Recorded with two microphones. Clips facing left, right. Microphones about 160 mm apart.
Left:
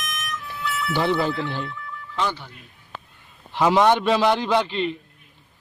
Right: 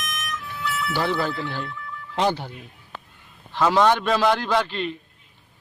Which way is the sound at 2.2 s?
40° right (ahead or behind).